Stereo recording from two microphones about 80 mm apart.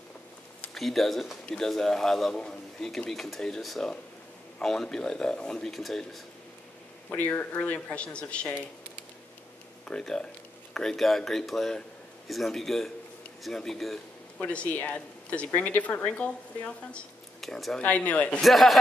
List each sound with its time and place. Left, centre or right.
0.7 s a man's voice: centre
7.1 s speech: left
9.8 s a man's voice: centre
14.4 s speech: centre
17.4 s speech: centre
17.7 s speech: centre
18.4 s a man's voice: centre